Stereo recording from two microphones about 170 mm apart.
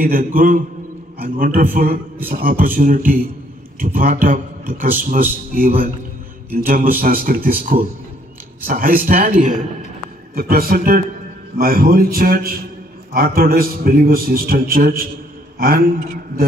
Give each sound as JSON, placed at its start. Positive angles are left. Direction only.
{"t": 0.0, "sound": "a man's voice", "side_deg": -55}